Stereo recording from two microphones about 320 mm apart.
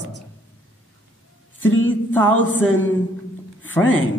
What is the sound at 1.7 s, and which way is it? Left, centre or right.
Speech, left.